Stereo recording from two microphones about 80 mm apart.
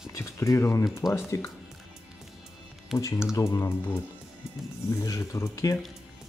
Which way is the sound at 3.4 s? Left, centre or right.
Left.